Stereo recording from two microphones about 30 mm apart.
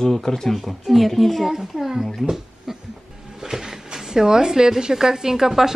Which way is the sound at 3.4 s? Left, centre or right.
Centre.